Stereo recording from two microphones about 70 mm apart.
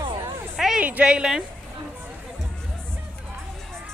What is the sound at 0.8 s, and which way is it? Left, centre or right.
Speech, centre.